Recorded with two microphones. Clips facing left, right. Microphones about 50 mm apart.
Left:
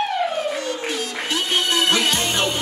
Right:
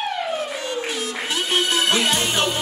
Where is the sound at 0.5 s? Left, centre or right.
Centre.